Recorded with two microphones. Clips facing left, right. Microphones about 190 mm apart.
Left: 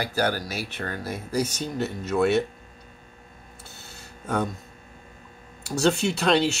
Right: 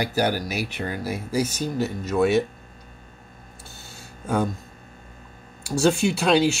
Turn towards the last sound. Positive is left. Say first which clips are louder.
# right 2 dB
turn(degrees=-5)  # may be behind; listen again after turning